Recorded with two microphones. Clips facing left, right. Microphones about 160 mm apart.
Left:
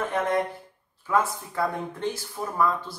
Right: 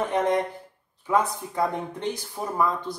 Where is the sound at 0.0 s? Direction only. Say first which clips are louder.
Right 2 dB; 15° right (ahead or behind).